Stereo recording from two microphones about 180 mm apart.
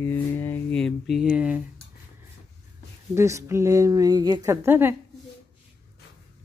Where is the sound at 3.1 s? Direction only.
15° right (ahead or behind).